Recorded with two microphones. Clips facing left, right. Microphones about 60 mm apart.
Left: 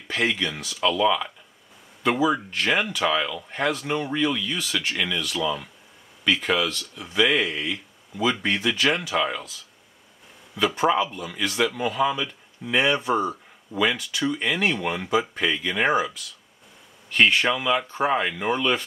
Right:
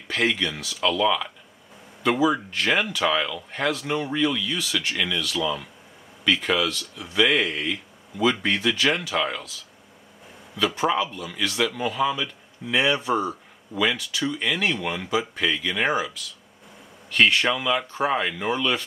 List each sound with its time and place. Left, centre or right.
0.1 s speech: centre
10.8 s speech: centre
15.9 s speech: left
17.1 s speech: centre